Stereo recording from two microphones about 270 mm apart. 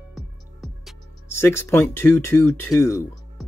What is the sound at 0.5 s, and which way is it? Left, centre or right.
Speech, centre.